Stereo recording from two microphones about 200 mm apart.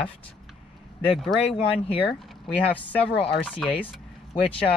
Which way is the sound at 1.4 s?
25° left (ahead or behind).